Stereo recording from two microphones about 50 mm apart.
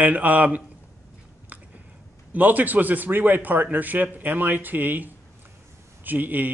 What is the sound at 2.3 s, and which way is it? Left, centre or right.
Speech, right.